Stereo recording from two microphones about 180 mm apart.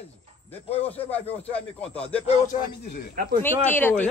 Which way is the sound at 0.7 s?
35° left (ahead or behind).